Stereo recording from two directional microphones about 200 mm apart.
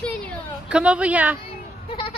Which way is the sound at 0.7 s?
5° right (ahead or behind).